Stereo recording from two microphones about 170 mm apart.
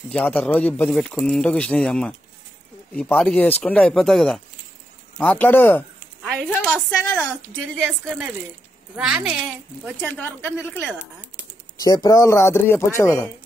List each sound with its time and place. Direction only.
0.1 s a woman's voice: 10° left (ahead or behind)
8.9 s a woman's voice: 5° right (ahead or behind)
10.6 s a woman's voice: 5° right (ahead or behind)
11.8 s speech: 20° left (ahead or behind)